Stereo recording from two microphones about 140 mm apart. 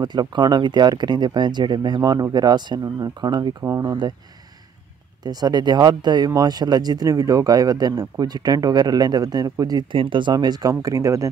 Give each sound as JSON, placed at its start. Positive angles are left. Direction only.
{"t": 0.0, "sound": "speech", "side_deg": -35}
{"t": 5.2, "sound": "speech", "side_deg": -30}